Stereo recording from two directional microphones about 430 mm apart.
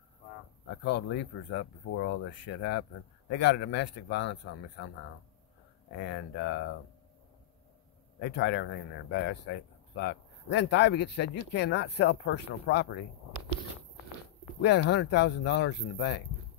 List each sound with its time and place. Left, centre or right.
0.7 s a man's voice: left
8.2 s a man's voice: left
14.6 s a man's voice: left